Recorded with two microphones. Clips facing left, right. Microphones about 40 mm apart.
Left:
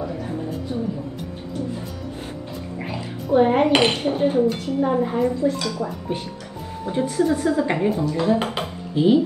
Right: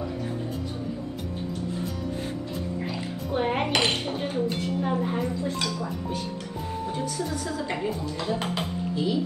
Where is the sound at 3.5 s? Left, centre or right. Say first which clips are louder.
Left 7 dB; left.